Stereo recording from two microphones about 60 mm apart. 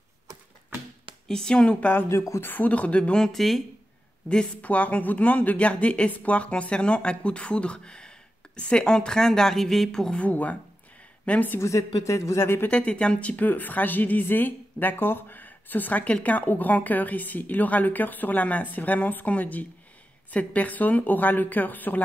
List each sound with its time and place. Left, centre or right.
1.2 s a woman's voice: centre
2.0 s speech: left
2.4 s speech: left
3.2 s speech: centre
4.3 s a woman's voice: left
10.2 s speech: left
11.6 s a woman's voice: left
12.4 s speech: left
12.6 s speech: centre